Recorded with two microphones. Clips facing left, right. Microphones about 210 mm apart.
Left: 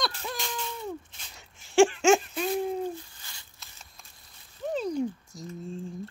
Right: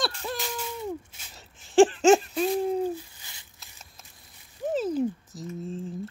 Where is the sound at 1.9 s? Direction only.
35° right (ahead or behind).